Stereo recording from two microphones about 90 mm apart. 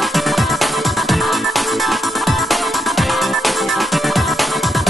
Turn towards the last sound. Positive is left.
turn(degrees=0)  # may be behind; listen again after turning